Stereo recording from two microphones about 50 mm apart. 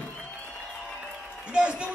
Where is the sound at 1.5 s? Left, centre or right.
Right.